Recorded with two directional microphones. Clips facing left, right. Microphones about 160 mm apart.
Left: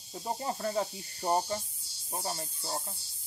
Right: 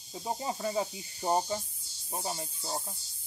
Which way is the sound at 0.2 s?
10° right (ahead or behind).